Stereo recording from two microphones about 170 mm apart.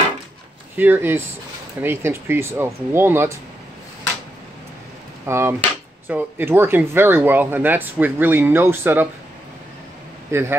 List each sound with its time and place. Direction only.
0.7 s speech: 10° right (ahead or behind)
5.2 s speech: 15° right (ahead or behind)
10.3 s speech: 15° right (ahead or behind)